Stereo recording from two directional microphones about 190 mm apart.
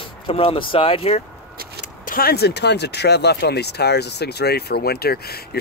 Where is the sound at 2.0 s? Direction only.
50° left (ahead or behind).